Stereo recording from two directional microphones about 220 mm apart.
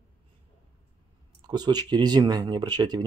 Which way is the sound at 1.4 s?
20° right (ahead or behind).